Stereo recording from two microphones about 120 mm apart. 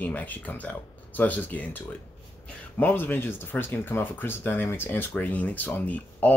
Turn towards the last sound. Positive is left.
turn(degrees=10)  # may be behind; listen again after turning